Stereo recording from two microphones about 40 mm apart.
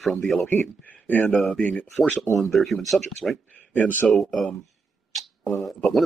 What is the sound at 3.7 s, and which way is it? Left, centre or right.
Speech, left.